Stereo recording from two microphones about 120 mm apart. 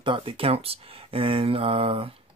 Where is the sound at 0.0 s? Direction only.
45° right (ahead or behind).